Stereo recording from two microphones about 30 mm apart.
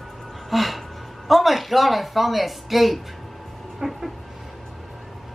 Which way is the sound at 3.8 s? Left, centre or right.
Centre.